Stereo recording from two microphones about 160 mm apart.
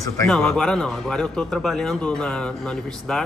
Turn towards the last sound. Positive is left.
turn(degrees=5)  # may be behind; listen again after turning